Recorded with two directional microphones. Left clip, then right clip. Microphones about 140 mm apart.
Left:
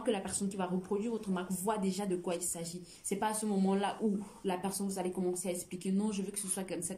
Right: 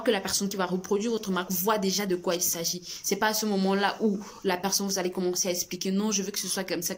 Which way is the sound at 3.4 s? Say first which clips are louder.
Right 7 dB; 20° left (ahead or behind).